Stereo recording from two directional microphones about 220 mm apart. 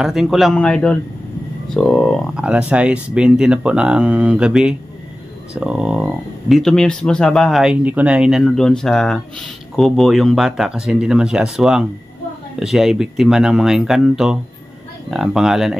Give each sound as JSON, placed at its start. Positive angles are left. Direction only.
{"t": 0.0, "sound": "speech", "side_deg": 0}